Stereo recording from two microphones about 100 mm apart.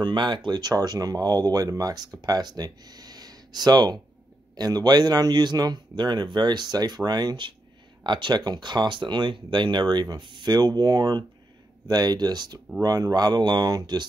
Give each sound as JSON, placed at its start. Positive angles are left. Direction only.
{"t": 0.0, "sound": "speech", "side_deg": -50}